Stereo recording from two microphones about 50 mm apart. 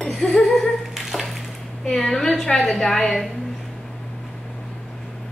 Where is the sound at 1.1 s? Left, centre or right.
Centre.